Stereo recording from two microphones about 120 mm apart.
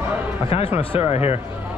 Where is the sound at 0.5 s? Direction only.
55° left (ahead or behind).